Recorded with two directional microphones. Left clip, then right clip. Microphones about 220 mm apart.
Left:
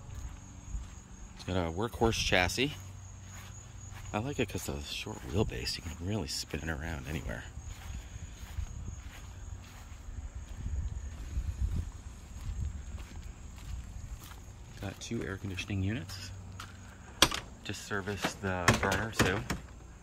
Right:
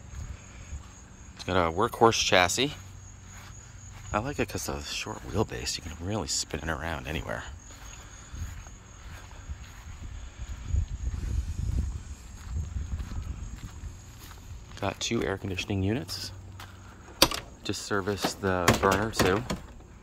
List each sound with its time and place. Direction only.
1.4 s speech: 5° left (ahead or behind)
4.1 s speech: 5° left (ahead or behind)
14.8 s speech: 15° right (ahead or behind)
17.4 s speech: 30° right (ahead or behind)